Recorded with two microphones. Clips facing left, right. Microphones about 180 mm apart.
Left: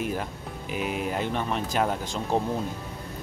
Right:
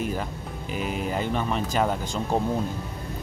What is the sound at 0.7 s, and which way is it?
Speech, 5° left (ahead or behind).